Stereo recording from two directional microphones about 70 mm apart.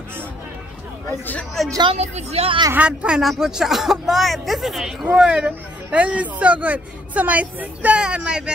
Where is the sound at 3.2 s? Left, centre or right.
Centre.